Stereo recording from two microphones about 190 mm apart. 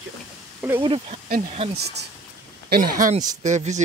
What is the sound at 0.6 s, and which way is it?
Speech, 10° right (ahead or behind).